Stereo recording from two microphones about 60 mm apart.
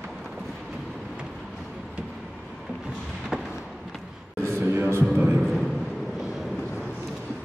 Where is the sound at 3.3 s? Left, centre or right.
Centre.